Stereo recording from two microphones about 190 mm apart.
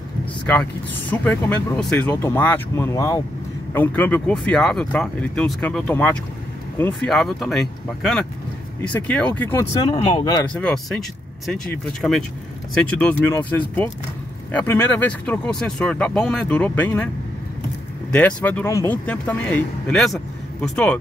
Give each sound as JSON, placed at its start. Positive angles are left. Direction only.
{"t": 1.2, "sound": "speech", "side_deg": 5}
{"t": 9.8, "sound": "speech", "side_deg": 25}
{"t": 10.6, "sound": "speech", "side_deg": 0}
{"t": 18.1, "sound": "speech", "side_deg": 10}